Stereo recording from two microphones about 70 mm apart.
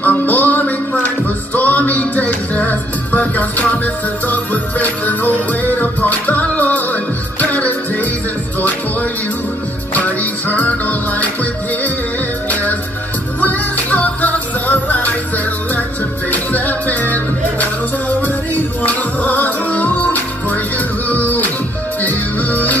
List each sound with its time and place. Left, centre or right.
0.0 s music: left
9.9 s music: left
13.4 s music: left
18.9 s music: left